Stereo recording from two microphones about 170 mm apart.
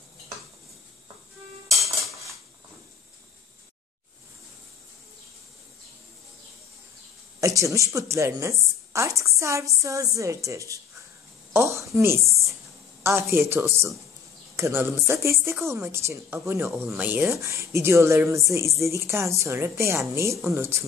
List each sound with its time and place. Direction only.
7.3 s a woman's voice: 20° right (ahead or behind)
11.5 s a sound: 15° right (ahead or behind)
13.0 s a woman's voice: 15° right (ahead or behind)